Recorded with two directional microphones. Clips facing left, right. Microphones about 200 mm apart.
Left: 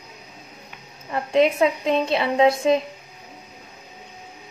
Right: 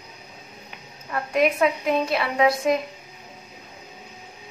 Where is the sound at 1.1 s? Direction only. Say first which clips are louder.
Left 3 dB; 25° left (ahead or behind).